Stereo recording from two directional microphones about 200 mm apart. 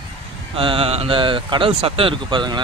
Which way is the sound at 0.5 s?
30° right (ahead or behind).